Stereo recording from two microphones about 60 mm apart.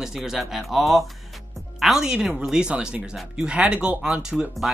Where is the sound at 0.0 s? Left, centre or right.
Centre.